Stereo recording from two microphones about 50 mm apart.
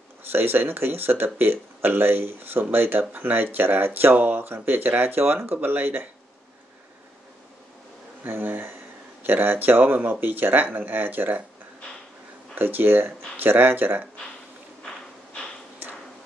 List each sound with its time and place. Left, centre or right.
0.3 s speech: right
8.2 s speech: right
12.5 s speech: right